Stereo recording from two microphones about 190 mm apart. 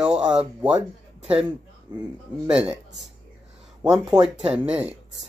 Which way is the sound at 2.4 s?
5° right (ahead or behind).